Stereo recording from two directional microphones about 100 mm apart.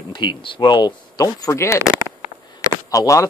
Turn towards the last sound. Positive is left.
turn(degrees=35)  # may be behind; listen again after turning